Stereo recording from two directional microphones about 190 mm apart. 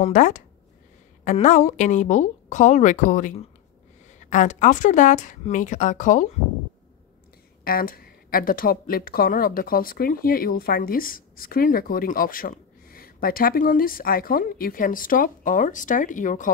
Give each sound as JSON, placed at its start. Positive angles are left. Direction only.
{"t": 0.0, "sound": "a woman's voice", "side_deg": 40}
{"t": 7.6, "sound": "speech", "side_deg": 50}